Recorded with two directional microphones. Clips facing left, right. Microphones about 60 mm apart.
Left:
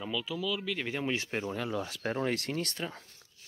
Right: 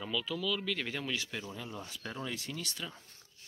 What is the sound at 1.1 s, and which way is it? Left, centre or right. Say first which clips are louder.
Speech: left 5 dB; left.